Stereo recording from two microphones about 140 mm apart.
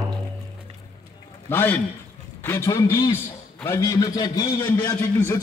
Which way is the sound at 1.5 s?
15° left (ahead or behind).